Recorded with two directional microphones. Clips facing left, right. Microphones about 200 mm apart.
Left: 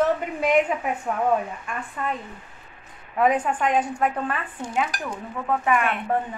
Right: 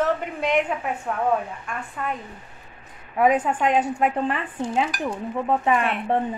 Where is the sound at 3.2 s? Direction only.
10° right (ahead or behind).